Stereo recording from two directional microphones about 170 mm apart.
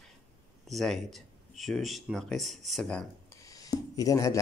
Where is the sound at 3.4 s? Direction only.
20° left (ahead or behind).